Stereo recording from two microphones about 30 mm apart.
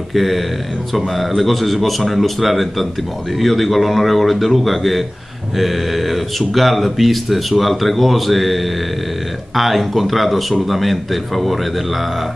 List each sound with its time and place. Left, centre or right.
0.1 s speech: centre